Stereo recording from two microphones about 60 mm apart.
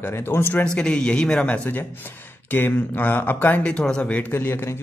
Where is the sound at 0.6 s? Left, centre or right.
Centre; by 3.6 s left.